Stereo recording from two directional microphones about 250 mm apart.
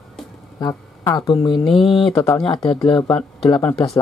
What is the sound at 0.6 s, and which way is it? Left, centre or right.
A woman's voice, centre.